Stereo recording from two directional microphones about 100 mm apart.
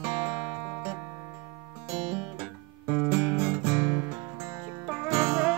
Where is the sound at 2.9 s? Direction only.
20° right (ahead or behind).